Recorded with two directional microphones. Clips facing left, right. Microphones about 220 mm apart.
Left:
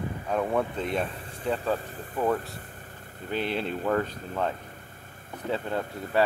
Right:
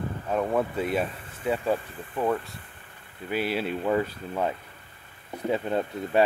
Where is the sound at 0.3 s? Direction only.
Centre (ahead or behind).